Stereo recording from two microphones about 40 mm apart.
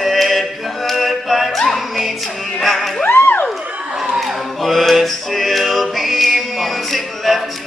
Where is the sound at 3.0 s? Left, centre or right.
Left.